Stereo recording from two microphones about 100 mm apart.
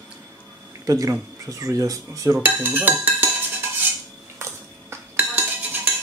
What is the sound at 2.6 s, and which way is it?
Music, 15° right (ahead or behind).